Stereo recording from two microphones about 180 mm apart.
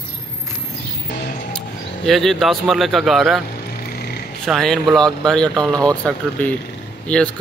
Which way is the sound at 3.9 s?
60° left (ahead or behind).